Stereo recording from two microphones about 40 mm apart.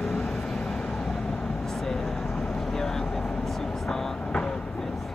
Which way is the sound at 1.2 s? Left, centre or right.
Centre.